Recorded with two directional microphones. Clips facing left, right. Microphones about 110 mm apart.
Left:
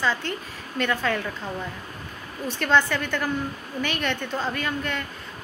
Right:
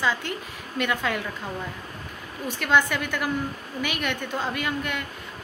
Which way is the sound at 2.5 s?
10° right (ahead or behind).